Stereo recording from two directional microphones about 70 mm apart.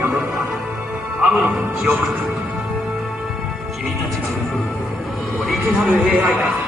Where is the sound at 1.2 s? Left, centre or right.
Centre.